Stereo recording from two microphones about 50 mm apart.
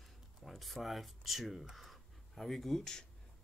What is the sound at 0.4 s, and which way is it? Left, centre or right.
Speech, centre.